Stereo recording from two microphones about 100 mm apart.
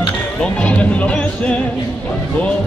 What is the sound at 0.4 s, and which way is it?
Speech, 15° left (ahead or behind).